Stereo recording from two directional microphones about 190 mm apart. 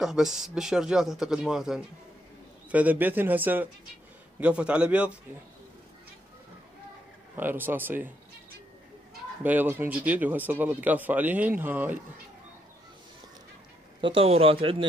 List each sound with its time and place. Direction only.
0.0 s speech: centre (ahead or behind)
7.3 s speech: 10° right (ahead or behind)
9.4 s speech: 10° right (ahead or behind)
14.0 s speech: 30° right (ahead or behind)